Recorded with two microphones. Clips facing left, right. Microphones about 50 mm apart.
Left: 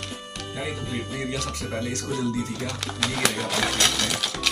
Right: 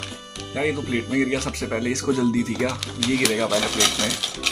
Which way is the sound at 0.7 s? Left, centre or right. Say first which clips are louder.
Right 9 dB; right.